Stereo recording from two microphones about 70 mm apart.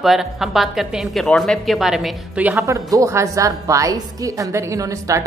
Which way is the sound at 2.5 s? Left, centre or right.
Right.